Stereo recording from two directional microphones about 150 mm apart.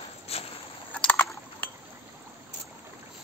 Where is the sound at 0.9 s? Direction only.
10° left (ahead or behind).